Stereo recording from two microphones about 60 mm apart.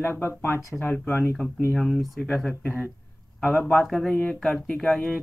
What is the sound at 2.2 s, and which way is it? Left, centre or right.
Speech, left.